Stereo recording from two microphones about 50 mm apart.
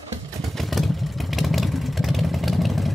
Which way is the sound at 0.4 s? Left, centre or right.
Centre.